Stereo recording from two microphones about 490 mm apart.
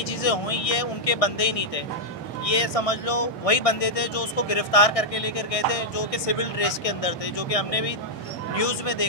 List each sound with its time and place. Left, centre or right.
0.2 s speech: left